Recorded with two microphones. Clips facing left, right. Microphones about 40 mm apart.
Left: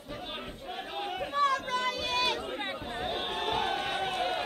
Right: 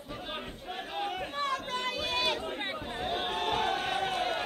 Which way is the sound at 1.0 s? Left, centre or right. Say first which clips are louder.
Right 1 dB; centre.